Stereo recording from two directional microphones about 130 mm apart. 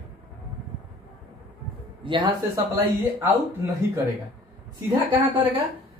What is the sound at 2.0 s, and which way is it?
Speech, 40° right (ahead or behind).